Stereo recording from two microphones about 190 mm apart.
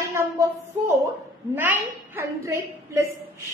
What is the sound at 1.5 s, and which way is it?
A woman's voice, 10° right (ahead or behind).